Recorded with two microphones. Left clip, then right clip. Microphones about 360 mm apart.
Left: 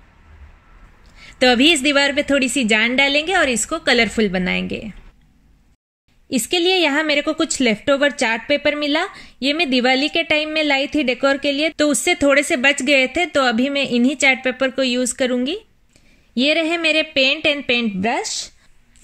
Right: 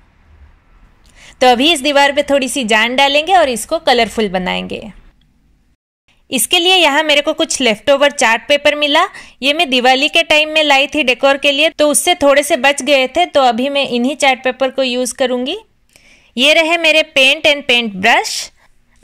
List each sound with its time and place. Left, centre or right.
1.1 s a woman's voice: centre
6.2 s a woman's voice: centre